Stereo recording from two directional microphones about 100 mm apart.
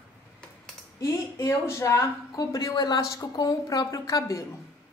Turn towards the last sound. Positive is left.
turn(degrees=35)  # may be behind; listen again after turning